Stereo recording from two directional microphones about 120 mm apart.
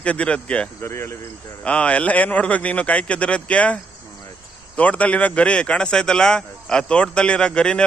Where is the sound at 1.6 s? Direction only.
10° left (ahead or behind).